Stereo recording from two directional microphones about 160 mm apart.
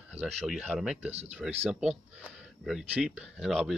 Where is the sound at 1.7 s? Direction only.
5° right (ahead or behind).